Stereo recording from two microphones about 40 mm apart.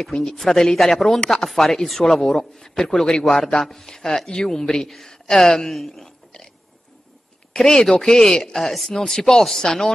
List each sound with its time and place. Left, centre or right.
0.0 s speech: centre
1.2 s speech: centre
1.5 s speech: centre
7.5 s speech: centre